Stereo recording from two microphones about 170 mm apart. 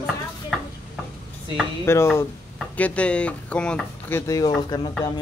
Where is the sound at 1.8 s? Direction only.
15° left (ahead or behind).